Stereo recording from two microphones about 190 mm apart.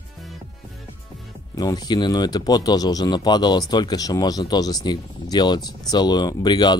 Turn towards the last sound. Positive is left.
turn(degrees=20)  # may be behind; listen again after turning